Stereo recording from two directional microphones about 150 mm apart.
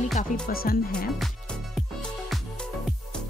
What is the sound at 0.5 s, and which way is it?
Speech, 80° left.